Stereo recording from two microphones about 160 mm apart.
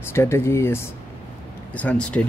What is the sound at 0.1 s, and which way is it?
Speech, 15° left (ahead or behind).